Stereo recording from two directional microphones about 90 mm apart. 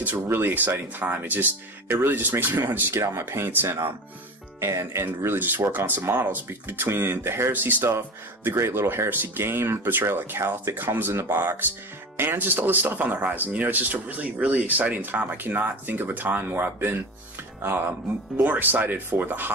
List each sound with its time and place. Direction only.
0.0 s speech: 25° right (ahead or behind)
18.4 s speech: 20° right (ahead or behind)